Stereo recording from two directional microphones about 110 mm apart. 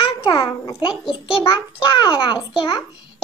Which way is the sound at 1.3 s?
55° left (ahead or behind).